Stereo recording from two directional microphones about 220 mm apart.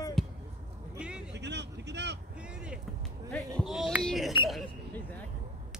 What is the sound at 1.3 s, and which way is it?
Vehicle, 50° right (ahead or behind).